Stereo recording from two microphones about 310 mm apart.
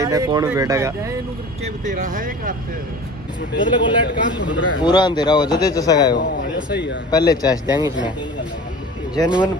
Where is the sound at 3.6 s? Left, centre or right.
Centre.